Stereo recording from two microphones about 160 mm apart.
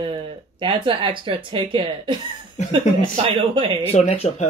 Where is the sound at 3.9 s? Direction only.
40° left (ahead or behind).